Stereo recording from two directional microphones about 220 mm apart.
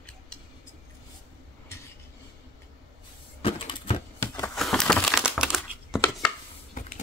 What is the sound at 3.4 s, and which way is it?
Printer, 25° left (ahead or behind).